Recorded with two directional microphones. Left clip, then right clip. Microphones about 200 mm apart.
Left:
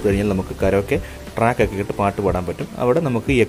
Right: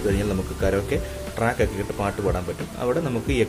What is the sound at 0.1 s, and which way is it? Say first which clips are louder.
Speech: left 5 dB; 30° left (ahead or behind).